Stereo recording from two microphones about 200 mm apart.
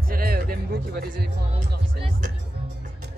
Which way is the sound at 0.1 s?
45° right (ahead or behind).